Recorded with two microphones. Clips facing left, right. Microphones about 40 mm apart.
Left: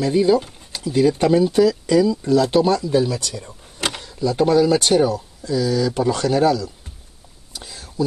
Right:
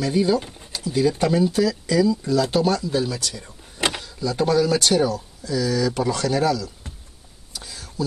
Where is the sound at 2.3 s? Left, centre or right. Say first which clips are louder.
Left 4 dB; left.